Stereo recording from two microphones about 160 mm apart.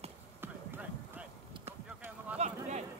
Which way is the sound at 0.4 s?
10° right (ahead or behind).